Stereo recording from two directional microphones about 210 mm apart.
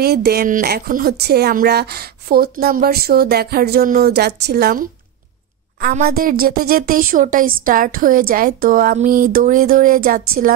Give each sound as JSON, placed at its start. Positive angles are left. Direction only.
{"t": 0.0, "sound": "a woman's voice", "side_deg": -50}